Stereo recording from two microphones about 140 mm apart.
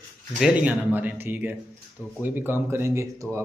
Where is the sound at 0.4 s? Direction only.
10° right (ahead or behind).